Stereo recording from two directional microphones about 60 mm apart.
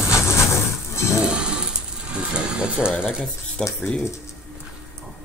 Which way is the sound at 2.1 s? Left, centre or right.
Centre.